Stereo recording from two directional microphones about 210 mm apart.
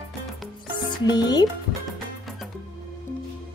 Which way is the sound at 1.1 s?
20° left (ahead or behind).